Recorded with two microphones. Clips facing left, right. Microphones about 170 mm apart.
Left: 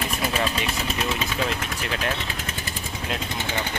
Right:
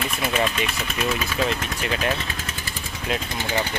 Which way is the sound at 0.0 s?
35° left (ahead or behind).